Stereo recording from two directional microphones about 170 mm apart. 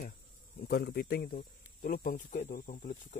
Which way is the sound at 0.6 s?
60° left (ahead or behind).